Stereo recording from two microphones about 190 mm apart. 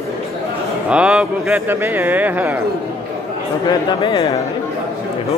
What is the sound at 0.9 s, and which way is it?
Speech, 5° right (ahead or behind).